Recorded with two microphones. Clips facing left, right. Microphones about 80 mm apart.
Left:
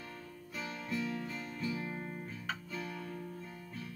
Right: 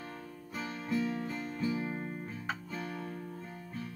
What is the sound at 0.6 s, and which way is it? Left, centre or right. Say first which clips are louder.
Music: right 4 dB; right.